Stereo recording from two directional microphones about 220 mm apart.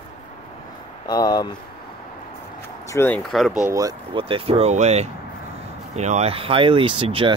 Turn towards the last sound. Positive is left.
turn(degrees=-25)  # may be behind; listen again after turning